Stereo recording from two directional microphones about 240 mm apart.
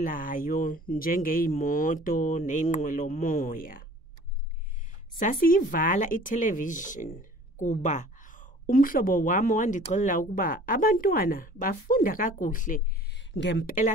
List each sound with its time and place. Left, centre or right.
0.0 s speech: left
5.2 s speech: left